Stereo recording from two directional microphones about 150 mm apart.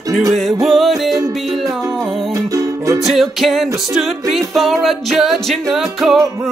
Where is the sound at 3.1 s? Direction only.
Centre (ahead or behind).